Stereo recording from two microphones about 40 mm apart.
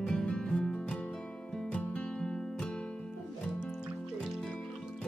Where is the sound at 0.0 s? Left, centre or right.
Centre.